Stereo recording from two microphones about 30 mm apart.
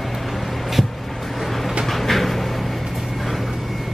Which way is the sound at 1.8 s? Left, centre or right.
Centre.